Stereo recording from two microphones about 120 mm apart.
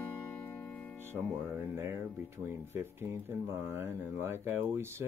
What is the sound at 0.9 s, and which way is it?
Speech, 20° right (ahead or behind).